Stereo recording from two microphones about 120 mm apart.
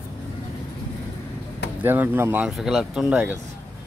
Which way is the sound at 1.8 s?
15° right (ahead or behind).